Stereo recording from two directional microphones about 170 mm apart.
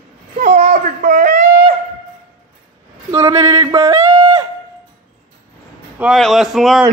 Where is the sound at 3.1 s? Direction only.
15° right (ahead or behind).